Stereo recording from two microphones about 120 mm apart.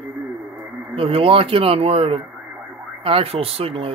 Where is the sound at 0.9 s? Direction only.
50° right (ahead or behind).